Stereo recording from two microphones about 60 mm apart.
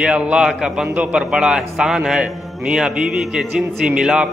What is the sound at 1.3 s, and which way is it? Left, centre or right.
A man's voice, centre.